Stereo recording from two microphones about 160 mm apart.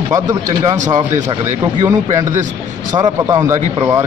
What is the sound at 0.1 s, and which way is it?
Speech, 20° right (ahead or behind).